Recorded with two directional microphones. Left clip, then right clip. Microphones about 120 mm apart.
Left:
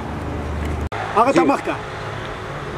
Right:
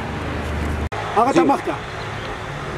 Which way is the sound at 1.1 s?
10° left (ahead or behind).